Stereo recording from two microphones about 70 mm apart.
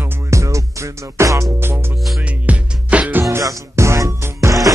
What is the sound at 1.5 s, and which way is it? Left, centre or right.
Music, right.